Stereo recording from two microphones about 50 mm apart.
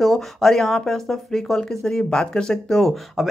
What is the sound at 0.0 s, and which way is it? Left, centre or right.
Speech, centre.